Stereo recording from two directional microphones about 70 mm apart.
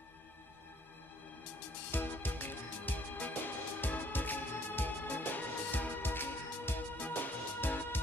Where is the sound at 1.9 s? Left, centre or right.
Left.